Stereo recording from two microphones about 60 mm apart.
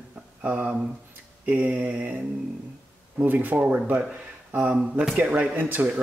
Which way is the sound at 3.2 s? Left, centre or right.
Right.